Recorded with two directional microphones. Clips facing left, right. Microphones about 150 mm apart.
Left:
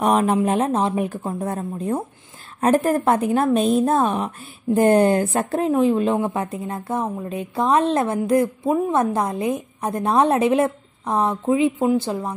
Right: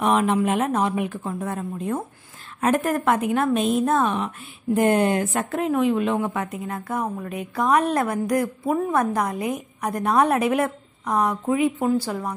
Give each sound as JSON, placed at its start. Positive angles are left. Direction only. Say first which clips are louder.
{"t": 0.0, "sound": "a woman's voice", "louder": "left 2 dB", "side_deg": 35}